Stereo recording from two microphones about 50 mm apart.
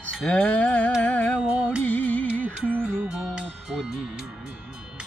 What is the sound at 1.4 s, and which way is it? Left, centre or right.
Music, centre.